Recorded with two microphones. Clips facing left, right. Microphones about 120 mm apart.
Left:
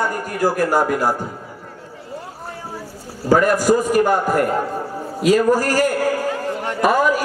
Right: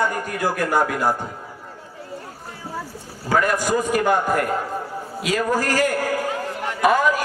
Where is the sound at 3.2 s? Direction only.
40° left (ahead or behind).